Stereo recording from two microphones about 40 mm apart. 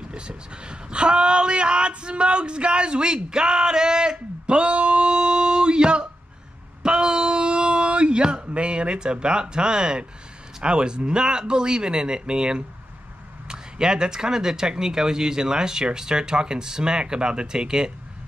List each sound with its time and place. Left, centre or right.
0.3 s speech: right
6.8 s a sound: right
10.6 s speech: right